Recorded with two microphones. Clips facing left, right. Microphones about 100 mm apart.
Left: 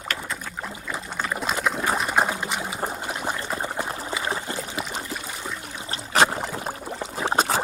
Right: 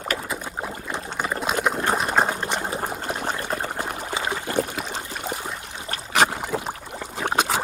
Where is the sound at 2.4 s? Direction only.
5° left (ahead or behind).